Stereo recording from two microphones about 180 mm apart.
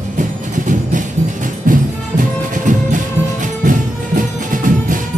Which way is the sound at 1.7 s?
50° right (ahead or behind).